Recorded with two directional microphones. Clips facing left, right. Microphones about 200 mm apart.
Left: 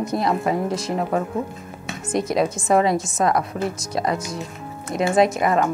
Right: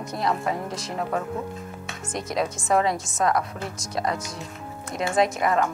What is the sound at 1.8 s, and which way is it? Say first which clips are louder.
Music: left 10 dB; 10° left (ahead or behind).